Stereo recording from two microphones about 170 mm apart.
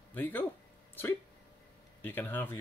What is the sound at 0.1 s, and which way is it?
Speech, 10° left (ahead or behind).